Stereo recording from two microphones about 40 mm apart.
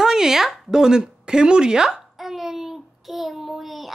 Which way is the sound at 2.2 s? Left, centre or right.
Centre.